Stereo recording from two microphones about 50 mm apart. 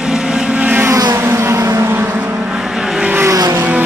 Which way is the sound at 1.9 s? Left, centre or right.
Right.